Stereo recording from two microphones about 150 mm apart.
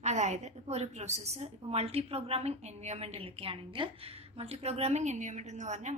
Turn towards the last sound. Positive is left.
turn(degrees=-50)  # may be behind; listen again after turning